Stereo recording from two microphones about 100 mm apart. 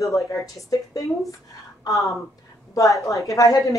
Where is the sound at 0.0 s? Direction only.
30° left (ahead or behind).